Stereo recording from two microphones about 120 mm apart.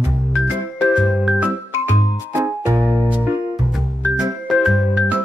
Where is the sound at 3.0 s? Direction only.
10° right (ahead or behind).